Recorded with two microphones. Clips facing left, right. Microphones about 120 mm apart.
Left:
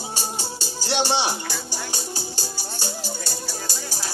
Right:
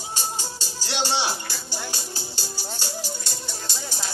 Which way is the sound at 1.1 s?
15° left (ahead or behind).